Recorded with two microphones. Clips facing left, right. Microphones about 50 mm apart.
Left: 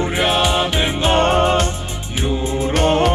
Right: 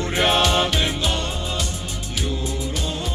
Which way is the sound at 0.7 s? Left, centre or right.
Left.